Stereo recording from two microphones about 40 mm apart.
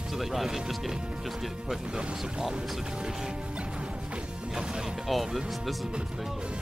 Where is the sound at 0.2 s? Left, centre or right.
Centre.